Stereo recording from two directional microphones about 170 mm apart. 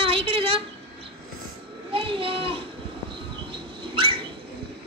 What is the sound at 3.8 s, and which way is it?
Bird, 30° right (ahead or behind).